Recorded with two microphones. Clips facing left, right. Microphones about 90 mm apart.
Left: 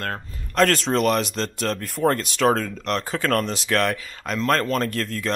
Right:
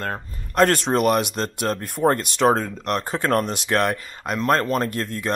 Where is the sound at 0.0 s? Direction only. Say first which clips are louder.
Right 1 dB; 5° right (ahead or behind).